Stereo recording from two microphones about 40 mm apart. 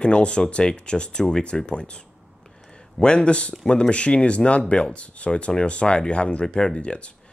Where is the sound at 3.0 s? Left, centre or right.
Left.